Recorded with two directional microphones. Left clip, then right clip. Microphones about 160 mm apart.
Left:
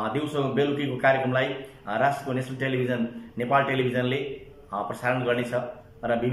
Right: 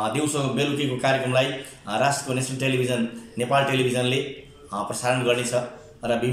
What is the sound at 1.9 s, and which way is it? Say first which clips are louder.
A man's voice: right 1 dB; 10° right (ahead or behind).